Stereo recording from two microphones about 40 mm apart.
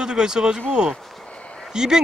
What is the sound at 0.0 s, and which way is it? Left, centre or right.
Speech, centre.